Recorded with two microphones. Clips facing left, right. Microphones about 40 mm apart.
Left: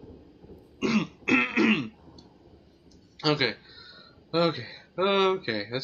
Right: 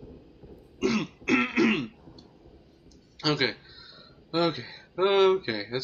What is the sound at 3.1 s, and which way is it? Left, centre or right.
Speech, centre.